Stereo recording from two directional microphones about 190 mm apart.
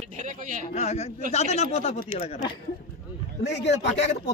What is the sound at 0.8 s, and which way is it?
Speech, 35° left (ahead or behind).